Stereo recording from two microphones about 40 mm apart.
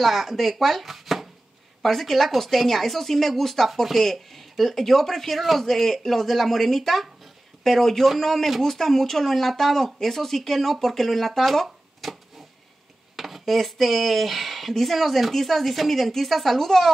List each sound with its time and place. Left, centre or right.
0.0 s speech: centre